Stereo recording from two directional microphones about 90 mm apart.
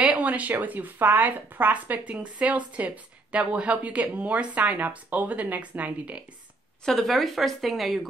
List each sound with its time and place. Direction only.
0.0 s speech: 15° right (ahead or behind)
6.8 s a woman's voice: 5° left (ahead or behind)